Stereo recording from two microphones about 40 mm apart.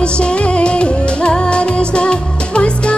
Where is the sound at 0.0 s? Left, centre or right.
Left.